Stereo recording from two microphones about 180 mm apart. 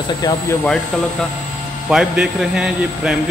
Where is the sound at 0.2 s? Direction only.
20° left (ahead or behind).